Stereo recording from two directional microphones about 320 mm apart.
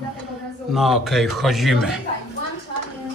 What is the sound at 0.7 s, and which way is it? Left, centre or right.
A man's voice, centre.